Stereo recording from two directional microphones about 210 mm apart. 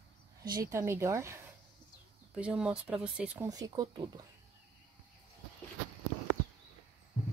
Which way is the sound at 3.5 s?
20° right (ahead or behind).